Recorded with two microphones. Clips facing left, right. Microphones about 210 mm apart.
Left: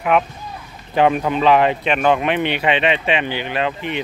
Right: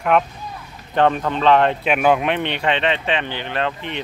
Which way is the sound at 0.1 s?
Centre (ahead or behind).